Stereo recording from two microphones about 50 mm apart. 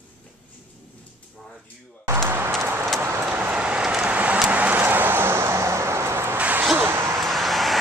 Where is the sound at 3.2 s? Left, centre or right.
Right.